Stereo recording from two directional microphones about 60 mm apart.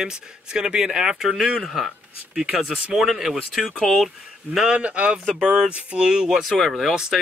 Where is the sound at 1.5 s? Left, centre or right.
Centre.